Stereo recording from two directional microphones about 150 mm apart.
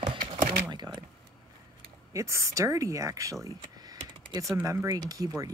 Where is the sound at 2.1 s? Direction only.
20° right (ahead or behind).